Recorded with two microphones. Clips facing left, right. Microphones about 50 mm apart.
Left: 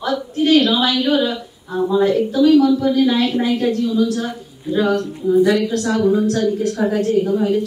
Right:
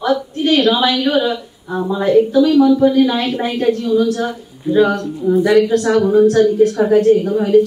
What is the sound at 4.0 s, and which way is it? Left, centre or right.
Speech, right.